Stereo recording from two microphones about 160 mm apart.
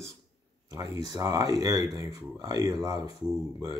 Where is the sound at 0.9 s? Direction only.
25° right (ahead or behind).